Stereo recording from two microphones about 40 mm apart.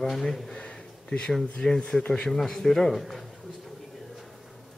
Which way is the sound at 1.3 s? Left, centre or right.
Centre.